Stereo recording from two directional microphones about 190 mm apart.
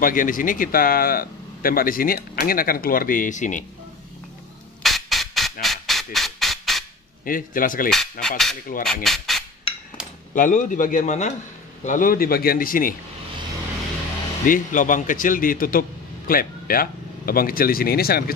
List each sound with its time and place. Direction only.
0.0 s speech: 45° left (ahead or behind)
4.8 s music: centre (ahead or behind)
7.2 s speech: 45° left (ahead or behind)
7.9 s speech: centre (ahead or behind)
10.3 s speech: 45° left (ahead or behind)
14.4 s speech: 45° left (ahead or behind)